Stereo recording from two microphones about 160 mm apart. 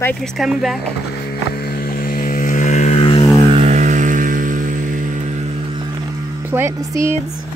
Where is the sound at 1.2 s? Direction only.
75° left (ahead or behind); by 3.3 s 35° left (ahead or behind).